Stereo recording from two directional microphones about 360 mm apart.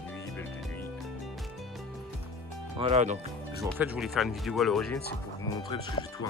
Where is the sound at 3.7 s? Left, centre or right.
Centre.